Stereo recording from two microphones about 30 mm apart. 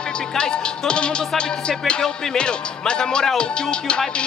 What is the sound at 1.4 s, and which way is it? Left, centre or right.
A man's voice, left.